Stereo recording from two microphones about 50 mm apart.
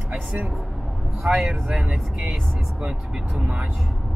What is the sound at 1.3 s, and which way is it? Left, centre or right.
Speech, centre.